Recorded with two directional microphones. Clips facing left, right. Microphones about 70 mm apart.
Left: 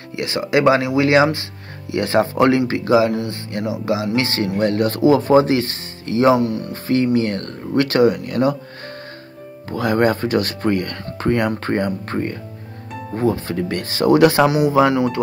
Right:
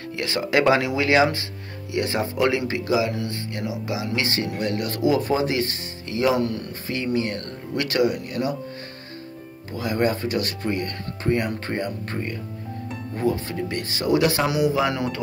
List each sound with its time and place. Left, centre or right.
0.2 s speech: centre
0.7 s speech: left
2.0 s speech: left
4.1 s speech: left
6.3 s speech: centre
6.7 s speech: left
9.7 s speech: left
14.5 s speech: left